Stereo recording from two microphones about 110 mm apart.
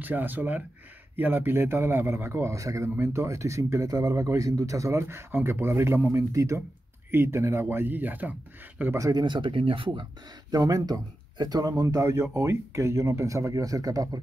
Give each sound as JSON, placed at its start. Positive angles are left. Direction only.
{"t": 0.0, "sound": "a man's voice", "side_deg": -15}
{"t": 8.9, "sound": "speech", "side_deg": -30}
{"t": 9.2, "sound": "speech", "side_deg": -45}
{"t": 10.5, "sound": "speech", "side_deg": -35}